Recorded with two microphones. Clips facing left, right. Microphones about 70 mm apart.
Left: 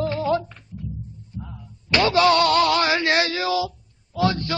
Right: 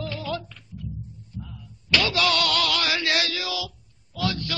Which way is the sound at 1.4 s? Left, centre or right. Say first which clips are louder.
Left 3 dB; left.